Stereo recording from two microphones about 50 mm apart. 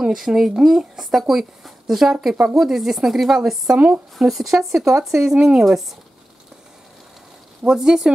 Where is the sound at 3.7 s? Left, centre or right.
Right.